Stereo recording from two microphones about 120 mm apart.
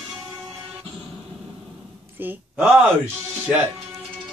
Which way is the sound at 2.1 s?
15° right (ahead or behind).